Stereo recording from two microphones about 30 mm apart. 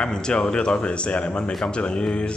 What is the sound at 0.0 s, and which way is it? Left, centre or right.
Speech, left.